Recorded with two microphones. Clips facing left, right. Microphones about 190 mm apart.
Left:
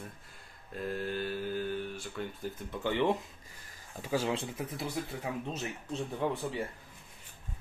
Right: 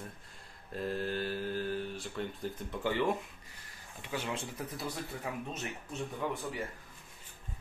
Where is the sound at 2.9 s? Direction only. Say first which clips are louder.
Left 2 dB; 20° left (ahead or behind).